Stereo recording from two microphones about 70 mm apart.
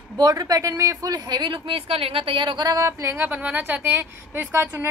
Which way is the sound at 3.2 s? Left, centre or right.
Right.